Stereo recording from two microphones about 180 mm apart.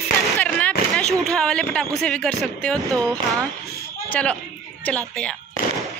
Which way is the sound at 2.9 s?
20° right (ahead or behind).